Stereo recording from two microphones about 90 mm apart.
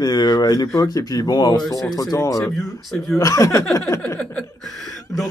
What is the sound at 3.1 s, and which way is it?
Speech, 40° left (ahead or behind).